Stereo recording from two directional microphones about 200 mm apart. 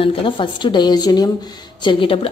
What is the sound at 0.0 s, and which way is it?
A woman's voice, 25° left (ahead or behind).